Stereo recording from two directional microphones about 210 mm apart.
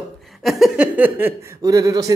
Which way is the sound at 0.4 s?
Centre (ahead or behind).